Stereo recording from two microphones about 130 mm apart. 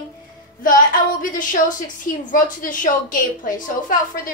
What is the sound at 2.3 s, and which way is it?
A woman's voice, 90° left.